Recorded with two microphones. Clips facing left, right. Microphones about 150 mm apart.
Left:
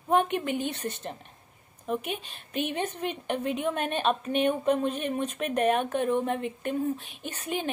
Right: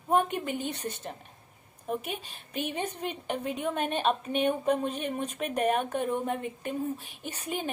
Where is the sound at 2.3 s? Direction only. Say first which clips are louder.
Left 4 dB; 60° left (ahead or behind).